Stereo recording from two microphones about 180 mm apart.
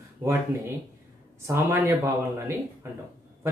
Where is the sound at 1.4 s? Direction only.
15° right (ahead or behind).